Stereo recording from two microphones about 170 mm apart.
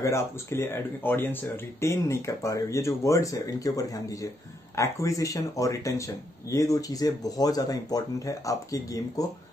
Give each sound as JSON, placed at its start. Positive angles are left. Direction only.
{"t": 0.0, "sound": "speech", "side_deg": 15}